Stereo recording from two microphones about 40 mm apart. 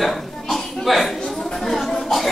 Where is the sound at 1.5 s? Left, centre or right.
Centre.